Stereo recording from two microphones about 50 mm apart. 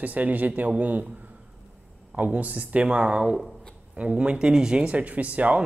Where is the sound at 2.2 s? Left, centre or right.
Right.